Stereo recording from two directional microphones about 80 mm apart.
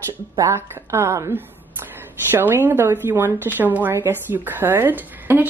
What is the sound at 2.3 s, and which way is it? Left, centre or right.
Speech, right.